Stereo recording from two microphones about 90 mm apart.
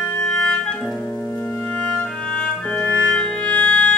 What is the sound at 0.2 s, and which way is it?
Clarinet, 10° left (ahead or behind).